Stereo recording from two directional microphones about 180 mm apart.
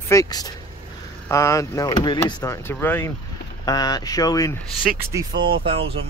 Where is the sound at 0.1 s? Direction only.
20° left (ahead or behind).